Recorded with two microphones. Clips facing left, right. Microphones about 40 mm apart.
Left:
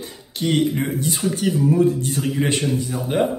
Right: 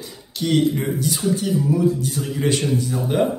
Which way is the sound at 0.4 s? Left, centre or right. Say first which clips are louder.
Right 1 dB; left.